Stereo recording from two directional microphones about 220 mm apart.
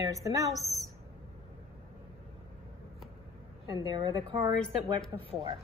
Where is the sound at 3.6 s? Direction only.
20° right (ahead or behind).